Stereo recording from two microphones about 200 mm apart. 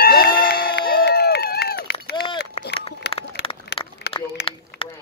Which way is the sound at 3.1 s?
60° left (ahead or behind).